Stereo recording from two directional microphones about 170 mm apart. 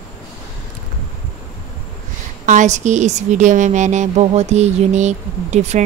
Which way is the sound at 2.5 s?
45° right (ahead or behind).